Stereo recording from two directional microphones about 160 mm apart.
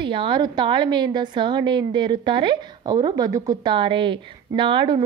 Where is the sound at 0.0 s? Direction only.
30° right (ahead or behind).